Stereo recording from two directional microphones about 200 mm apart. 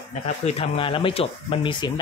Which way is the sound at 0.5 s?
30° left (ahead or behind).